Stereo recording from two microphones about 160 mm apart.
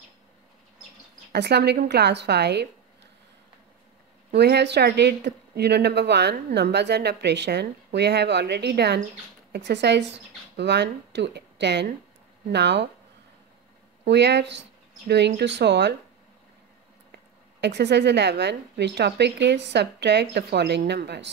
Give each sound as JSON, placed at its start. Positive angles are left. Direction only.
{"t": 1.3, "sound": "speech", "side_deg": -90}
{"t": 4.3, "sound": "speech", "side_deg": -90}
{"t": 14.0, "sound": "speech", "side_deg": -90}
{"t": 17.6, "sound": "speech", "side_deg": -90}